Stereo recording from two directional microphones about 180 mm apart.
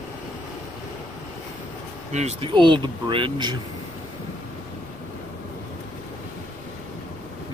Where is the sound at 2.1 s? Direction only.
40° right (ahead or behind).